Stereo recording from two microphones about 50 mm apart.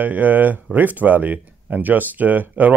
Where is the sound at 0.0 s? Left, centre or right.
Right.